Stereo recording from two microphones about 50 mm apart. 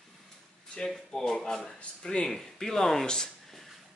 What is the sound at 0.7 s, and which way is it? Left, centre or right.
Speech, centre.